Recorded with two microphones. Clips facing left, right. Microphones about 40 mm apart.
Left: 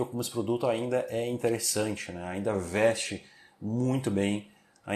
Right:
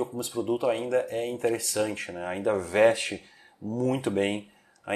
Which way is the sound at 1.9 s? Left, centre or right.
Right.